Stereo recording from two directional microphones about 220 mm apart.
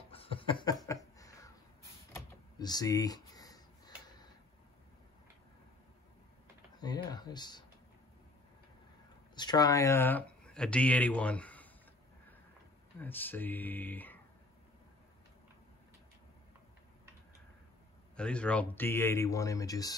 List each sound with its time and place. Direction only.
0.1 s chuckle: 25° left (ahead or behind)
0.8 s a sound: 15° left (ahead or behind)
6.8 s a sound: 20° left (ahead or behind)
9.3 s speech: 20° left (ahead or behind)
13.0 s speech: 10° left (ahead or behind)
18.1 s speech: 5° left (ahead or behind)